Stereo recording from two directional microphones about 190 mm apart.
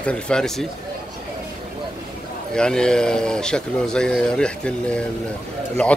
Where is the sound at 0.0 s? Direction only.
5° left (ahead or behind).